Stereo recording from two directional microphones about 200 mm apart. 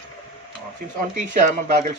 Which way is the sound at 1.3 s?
40° right (ahead or behind).